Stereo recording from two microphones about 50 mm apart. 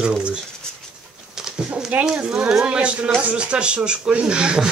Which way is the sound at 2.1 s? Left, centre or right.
Centre.